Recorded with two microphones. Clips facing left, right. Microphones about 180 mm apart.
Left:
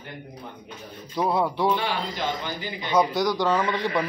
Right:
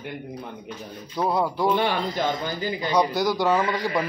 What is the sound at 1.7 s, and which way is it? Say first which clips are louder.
Speech: right 4 dB; 50° right (ahead or behind).